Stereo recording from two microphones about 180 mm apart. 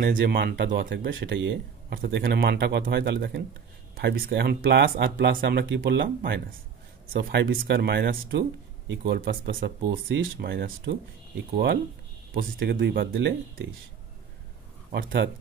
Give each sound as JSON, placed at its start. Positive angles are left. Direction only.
{"t": 0.0, "sound": "speech", "side_deg": -65}
{"t": 0.7, "sound": "speech", "side_deg": -55}
{"t": 1.1, "sound": "speech", "side_deg": -90}
{"t": 2.0, "sound": "speech", "side_deg": -70}
{"t": 5.1, "sound": "speech", "side_deg": -55}
{"t": 7.1, "sound": "speech", "side_deg": -65}
{"t": 12.4, "sound": "speech", "side_deg": -55}
{"t": 14.9, "sound": "speech", "side_deg": -80}